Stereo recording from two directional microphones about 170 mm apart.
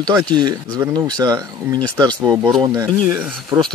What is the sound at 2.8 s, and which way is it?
Speech, 10° right (ahead or behind).